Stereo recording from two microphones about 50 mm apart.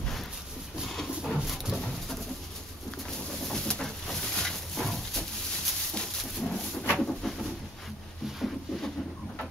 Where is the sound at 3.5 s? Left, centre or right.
Centre.